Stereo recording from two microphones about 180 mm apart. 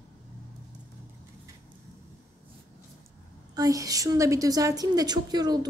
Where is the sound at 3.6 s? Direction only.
20° right (ahead or behind).